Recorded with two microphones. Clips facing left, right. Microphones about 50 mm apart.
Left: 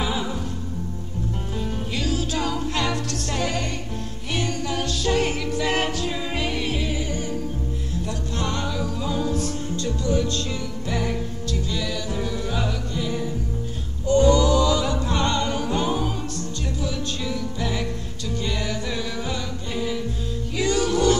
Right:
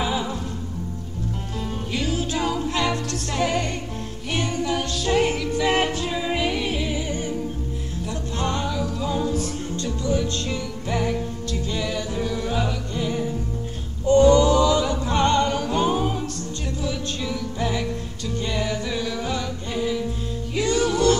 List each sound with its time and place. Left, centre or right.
2.3 s music: centre
4.6 s music: centre
7.1 s music: right
8.5 s music: centre
11.7 s music: right
12.4 s music: centre
12.9 s music: centre
14.0 s choir: right
14.8 s music: centre
15.1 s music: right
15.5 s music: centre
15.8 s music: centre